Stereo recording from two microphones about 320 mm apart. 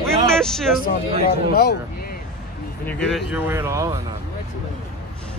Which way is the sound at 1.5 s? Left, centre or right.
Left.